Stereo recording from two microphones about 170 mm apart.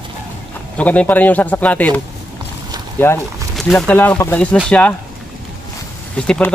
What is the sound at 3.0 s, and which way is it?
Speech, 15° left (ahead or behind).